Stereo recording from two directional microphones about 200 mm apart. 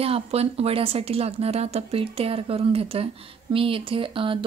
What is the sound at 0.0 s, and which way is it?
Speech, 30° right (ahead or behind).